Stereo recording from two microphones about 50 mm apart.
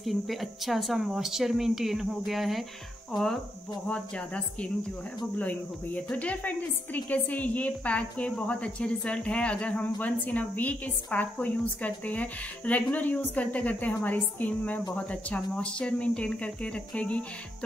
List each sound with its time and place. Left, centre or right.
0.0 s speech: centre
3.1 s cricket: centre
3.8 s a woman's voice: left